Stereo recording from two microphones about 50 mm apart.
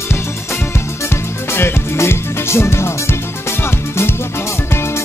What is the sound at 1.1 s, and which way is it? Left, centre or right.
Music, left.